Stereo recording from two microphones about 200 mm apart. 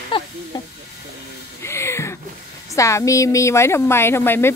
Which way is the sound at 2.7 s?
15° left (ahead or behind).